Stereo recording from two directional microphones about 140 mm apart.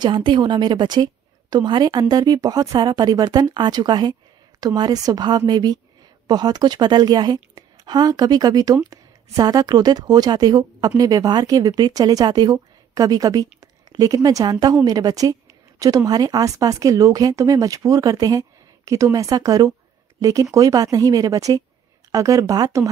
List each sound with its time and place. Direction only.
0.0 s a woman's voice: 35° right (ahead or behind)